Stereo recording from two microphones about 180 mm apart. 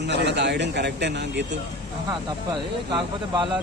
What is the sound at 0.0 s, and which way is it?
A man's voice, 70° right (ahead or behind).